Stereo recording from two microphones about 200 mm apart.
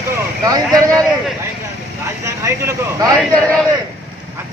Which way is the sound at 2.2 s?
15° right (ahead or behind).